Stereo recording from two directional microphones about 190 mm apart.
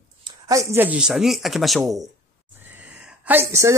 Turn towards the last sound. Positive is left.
turn(degrees=-15)  # may be behind; listen again after turning